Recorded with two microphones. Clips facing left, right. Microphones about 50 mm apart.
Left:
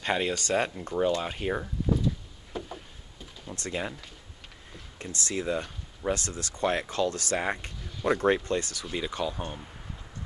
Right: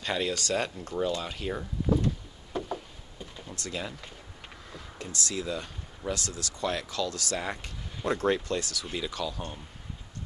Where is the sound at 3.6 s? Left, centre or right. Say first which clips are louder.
Left 3 dB; left.